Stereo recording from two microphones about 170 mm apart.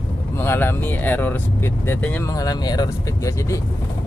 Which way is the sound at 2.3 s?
20° left (ahead or behind).